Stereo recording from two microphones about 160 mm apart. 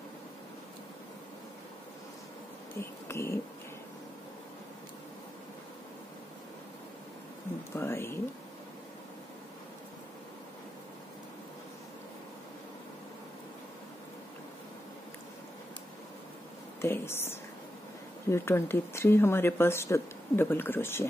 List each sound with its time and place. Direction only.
2.8 s speech: 15° left (ahead or behind)
7.7 s speech: 15° left (ahead or behind)
16.8 s speech: 15° left (ahead or behind)